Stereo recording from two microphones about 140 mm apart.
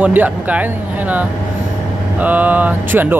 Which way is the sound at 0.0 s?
10° right (ahead or behind).